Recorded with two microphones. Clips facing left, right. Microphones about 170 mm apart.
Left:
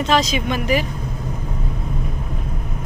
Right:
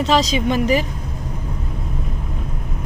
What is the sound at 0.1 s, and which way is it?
Speech, 35° right (ahead or behind).